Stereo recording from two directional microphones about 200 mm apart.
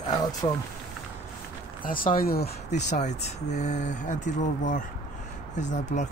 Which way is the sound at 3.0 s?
35° left (ahead or behind).